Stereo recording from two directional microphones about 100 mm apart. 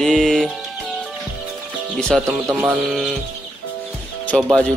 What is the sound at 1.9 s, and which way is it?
Speech, 5° left (ahead or behind).